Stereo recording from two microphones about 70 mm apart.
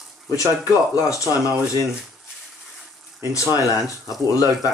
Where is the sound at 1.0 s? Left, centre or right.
Left.